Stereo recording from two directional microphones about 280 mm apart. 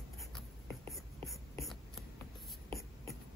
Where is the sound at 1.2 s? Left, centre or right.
Centre.